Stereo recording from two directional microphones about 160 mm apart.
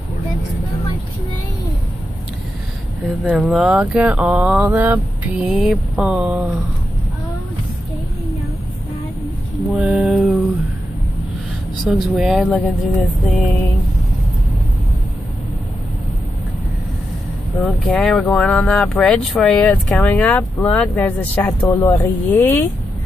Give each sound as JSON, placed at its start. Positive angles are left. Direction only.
{"t": 3.3, "sound": "speech", "side_deg": -5}
{"t": 9.7, "sound": "speech", "side_deg": -5}
{"t": 11.8, "sound": "speech", "side_deg": 0}
{"t": 12.4, "sound": "speech", "side_deg": 10}
{"t": 17.6, "sound": "speech", "side_deg": 5}